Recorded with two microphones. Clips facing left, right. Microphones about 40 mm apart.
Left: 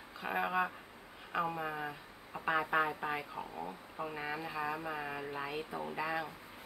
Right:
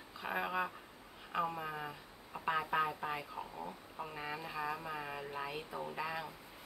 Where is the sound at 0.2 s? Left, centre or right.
Centre.